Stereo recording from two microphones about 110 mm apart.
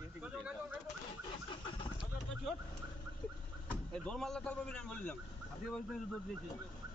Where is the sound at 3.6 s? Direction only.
10° left (ahead or behind).